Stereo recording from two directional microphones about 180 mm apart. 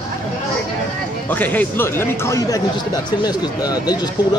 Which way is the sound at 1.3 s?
10° left (ahead or behind).